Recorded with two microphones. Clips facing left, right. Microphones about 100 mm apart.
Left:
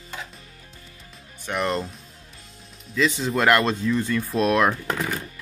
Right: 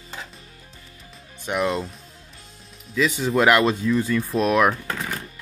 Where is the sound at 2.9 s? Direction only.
5° right (ahead or behind).